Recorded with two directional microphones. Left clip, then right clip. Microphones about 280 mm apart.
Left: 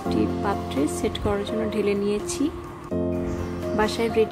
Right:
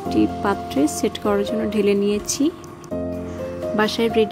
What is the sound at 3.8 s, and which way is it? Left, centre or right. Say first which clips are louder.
Speech: right 3 dB; centre.